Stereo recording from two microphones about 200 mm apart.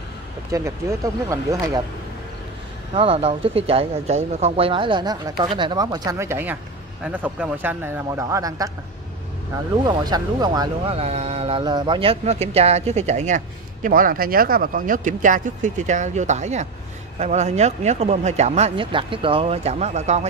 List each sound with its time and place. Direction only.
0.5 s speech: 15° right (ahead or behind)
2.9 s speech: 25° right (ahead or behind)
9.8 s speech: 20° right (ahead or behind)
11.0 s speech: 30° right (ahead or behind)